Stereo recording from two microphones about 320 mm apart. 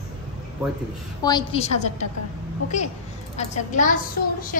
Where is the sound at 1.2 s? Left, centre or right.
Centre.